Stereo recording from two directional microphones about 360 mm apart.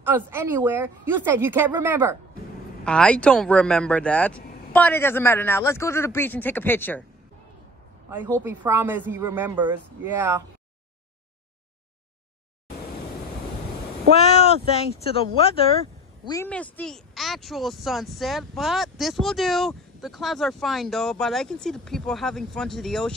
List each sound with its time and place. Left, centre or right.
0.0 s a woman's voice: centre
8.1 s speech: centre
14.2 s speech: centre